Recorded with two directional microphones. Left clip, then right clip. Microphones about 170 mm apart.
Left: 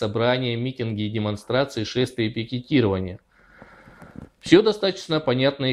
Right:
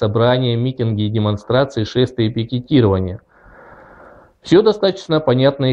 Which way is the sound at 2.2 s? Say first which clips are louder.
Right 6 dB; 50° left (ahead or behind).